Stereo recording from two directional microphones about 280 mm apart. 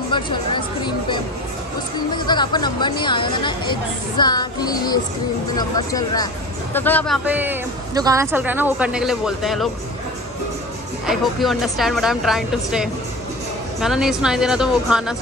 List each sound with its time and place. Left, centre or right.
0.1 s speech: centre
7.2 s a woman's voice: centre
11.1 s a woman's voice: centre